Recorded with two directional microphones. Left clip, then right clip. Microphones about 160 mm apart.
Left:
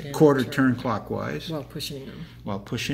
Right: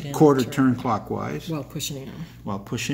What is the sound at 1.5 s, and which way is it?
Speech, 60° right (ahead or behind).